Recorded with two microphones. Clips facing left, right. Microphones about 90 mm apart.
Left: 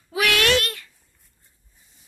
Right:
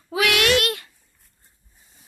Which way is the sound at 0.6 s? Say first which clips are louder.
Right 3 dB; 90° right.